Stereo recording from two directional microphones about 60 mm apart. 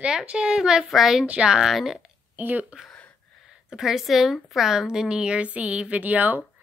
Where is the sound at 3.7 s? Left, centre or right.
Centre.